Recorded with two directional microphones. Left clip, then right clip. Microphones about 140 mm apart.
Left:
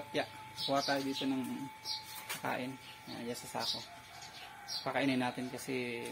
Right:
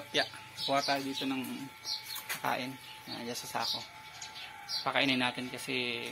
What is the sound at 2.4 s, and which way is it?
Speech, 20° right (ahead or behind).